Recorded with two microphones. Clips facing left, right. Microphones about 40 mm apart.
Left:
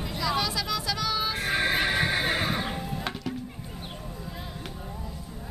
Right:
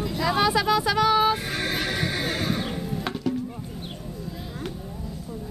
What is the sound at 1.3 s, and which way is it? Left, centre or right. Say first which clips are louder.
Neigh: left 2 dB; centre.